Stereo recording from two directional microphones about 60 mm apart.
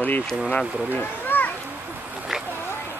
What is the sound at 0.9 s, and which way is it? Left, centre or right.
Children playing, left.